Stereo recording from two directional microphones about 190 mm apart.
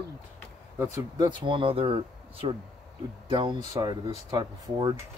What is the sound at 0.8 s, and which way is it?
Speech, 20° right (ahead or behind).